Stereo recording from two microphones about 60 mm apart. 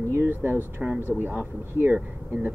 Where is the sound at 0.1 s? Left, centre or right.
Right.